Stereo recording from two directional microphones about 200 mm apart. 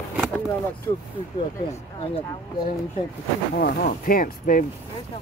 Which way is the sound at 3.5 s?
50° left (ahead or behind).